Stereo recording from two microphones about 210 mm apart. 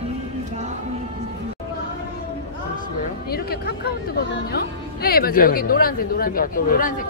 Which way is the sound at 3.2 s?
45° left (ahead or behind).